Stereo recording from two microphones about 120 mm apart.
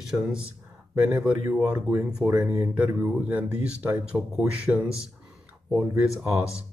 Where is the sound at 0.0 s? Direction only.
5° right (ahead or behind).